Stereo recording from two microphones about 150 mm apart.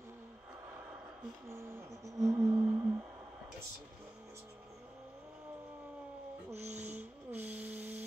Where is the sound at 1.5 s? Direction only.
15° right (ahead or behind).